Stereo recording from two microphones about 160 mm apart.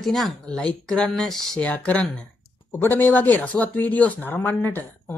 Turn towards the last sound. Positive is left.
turn(degrees=15)  # may be behind; listen again after turning